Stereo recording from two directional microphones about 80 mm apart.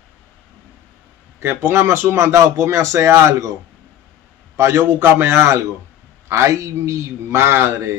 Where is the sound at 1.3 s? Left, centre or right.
Right.